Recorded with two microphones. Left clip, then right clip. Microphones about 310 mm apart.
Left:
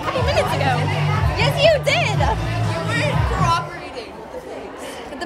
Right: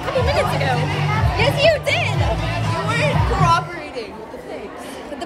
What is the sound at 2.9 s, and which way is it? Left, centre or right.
Music, centre.